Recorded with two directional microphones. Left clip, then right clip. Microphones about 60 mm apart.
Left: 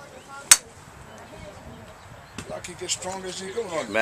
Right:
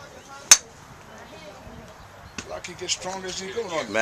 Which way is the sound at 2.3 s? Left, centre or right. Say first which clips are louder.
Right 1 dB; right.